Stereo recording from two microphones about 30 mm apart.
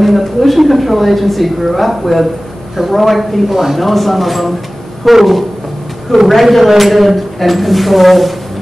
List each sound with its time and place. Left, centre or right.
0.0 s a woman's voice: centre